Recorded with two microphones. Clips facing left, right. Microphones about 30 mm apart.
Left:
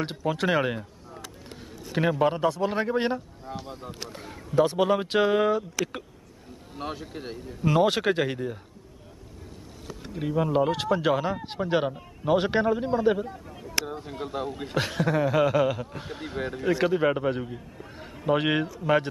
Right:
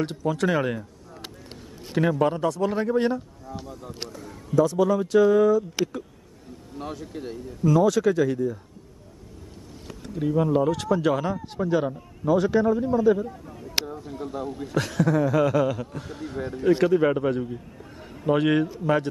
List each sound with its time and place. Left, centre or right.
0.0 s speech: left
2.0 s speech: centre
4.1 s speech: left
6.8 s a man's voice: left
7.6 s speech: left
10.0 s speech: left
10.6 s speech: left
11.3 s a man's voice: left
13.6 s speech: left
14.8 s speech: left
16.4 s speech: left
16.9 s a man's voice: centre